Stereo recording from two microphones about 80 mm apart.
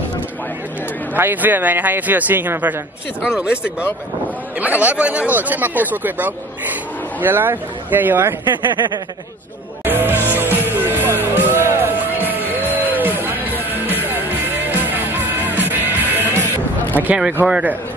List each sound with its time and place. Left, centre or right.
1.1 s speech: right
3.2 s speech: centre; by 8.4 s right
9.8 s music: right
17.0 s speech: right